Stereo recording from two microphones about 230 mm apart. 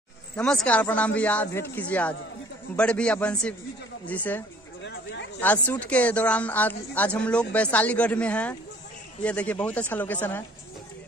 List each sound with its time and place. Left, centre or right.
0.7 s speech: centre
4.8 s a sound: left
5.4 s speech: centre